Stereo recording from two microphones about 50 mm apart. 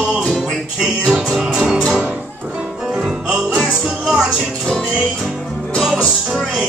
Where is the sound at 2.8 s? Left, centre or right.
Centre.